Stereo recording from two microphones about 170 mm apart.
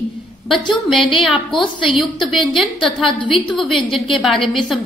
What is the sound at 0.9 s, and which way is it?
Speech, 30° left (ahead or behind).